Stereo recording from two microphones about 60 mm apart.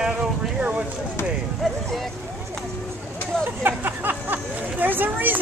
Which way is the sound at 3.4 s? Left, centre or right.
Right.